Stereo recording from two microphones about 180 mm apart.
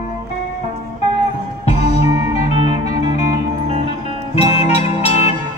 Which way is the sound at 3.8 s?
35° left (ahead or behind).